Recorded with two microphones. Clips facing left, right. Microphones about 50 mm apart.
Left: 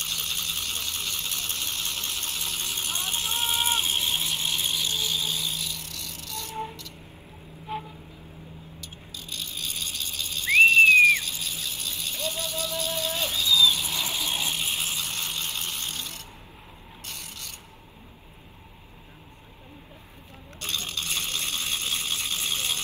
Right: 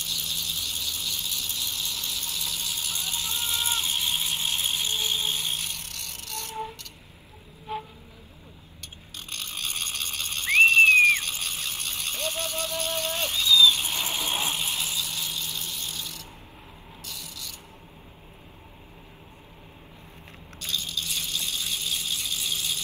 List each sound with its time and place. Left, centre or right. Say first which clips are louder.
0.0 s ratchet: left 1 dB; left
3.6 s vehicle: left 2 dB; left
4.0 s a sound: even; centre
4.7 s ratchet: even; right
6.5 s vehicle: even; centre
8.8 s a sound: right 2 dB; right
13.7 s vehicle: even; right
14.9 s a sound: even; left
17.0 s mechanisms: even; left
20.5 s rattle: even; left